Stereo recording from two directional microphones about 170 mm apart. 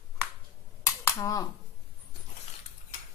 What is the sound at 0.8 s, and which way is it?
Cap gun, 15° left (ahead or behind).